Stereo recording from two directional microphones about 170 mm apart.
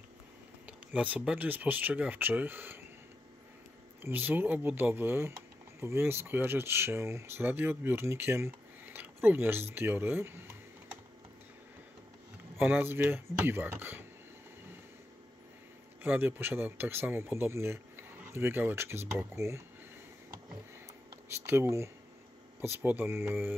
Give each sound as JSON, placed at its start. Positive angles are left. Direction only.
{"t": 0.7, "sound": "speech", "side_deg": -10}
{"t": 4.0, "sound": "speech", "side_deg": -10}
{"t": 12.5, "sound": "speech", "side_deg": -10}
{"t": 16.0, "sound": "speech", "side_deg": -10}
{"t": 21.5, "sound": "speech", "side_deg": -15}